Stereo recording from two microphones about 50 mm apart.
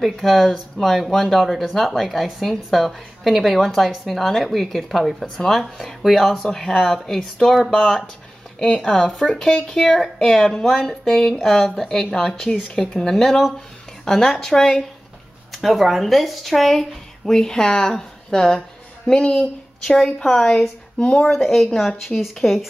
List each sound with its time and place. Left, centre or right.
0.0 s speech: centre
8.5 s speech: left
8.8 s speech: centre
15.5 s speech: centre
19.9 s speech: centre